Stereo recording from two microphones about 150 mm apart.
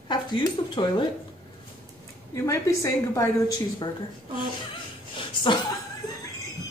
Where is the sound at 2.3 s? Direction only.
20° left (ahead or behind).